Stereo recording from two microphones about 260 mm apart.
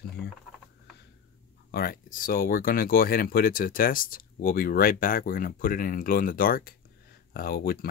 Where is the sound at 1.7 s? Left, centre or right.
Left.